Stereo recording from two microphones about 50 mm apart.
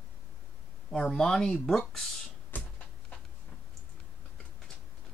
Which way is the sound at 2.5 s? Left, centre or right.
Left.